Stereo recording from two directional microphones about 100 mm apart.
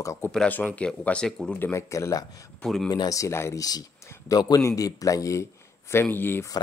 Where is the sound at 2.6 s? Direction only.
5° left (ahead or behind).